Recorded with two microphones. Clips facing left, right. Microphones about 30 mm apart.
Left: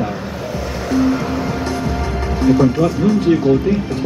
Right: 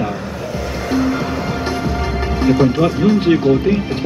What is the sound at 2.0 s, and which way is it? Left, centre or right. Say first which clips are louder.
Speech: even; right.